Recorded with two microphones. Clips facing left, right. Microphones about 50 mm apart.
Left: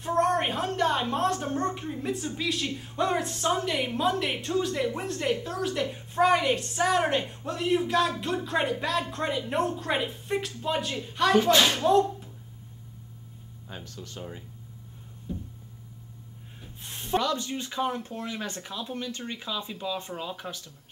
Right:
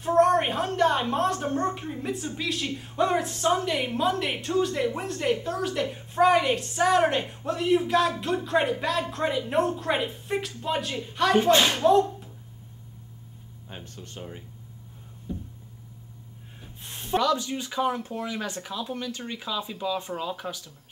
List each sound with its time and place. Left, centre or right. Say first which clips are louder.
0.0 s a woman's voice: right 4 dB; centre
13.7 s speech: left 1 dB; right
15.3 s a sound: right 1 dB; centre
16.6 s a woman's voice: even; centre